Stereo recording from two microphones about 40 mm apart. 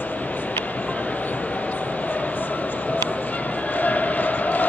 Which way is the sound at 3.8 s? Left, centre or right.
Left.